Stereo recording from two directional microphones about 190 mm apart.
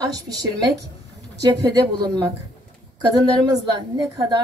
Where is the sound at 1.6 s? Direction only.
20° right (ahead or behind).